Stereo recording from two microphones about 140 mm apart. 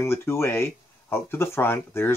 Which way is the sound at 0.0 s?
20° left (ahead or behind).